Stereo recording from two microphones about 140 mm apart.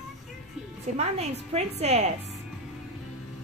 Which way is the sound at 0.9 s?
50° right (ahead or behind).